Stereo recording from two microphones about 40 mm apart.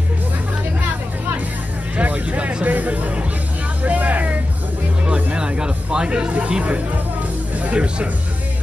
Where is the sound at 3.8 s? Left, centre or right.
Right.